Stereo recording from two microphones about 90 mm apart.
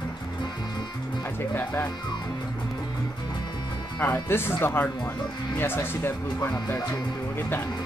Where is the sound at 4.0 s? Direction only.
25° left (ahead or behind).